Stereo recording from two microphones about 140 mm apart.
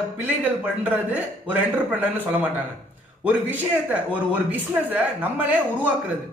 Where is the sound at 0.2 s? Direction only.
10° right (ahead or behind).